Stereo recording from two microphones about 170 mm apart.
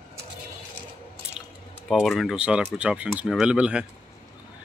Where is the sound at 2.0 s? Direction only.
Centre (ahead or behind).